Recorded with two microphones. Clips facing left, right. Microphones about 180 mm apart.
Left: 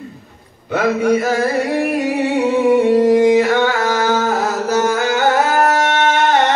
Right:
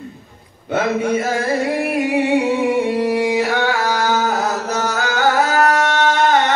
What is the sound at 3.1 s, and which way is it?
Mantra, 5° right (ahead or behind).